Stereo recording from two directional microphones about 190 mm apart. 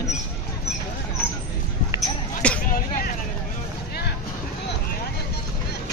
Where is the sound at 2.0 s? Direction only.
5° left (ahead or behind).